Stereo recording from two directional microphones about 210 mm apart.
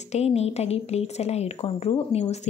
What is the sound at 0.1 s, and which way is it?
A woman's voice, 30° left (ahead or behind).